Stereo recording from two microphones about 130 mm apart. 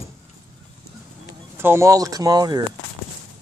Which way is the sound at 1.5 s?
20° right (ahead or behind).